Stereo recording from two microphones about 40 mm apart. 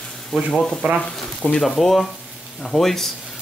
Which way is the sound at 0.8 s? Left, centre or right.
Right.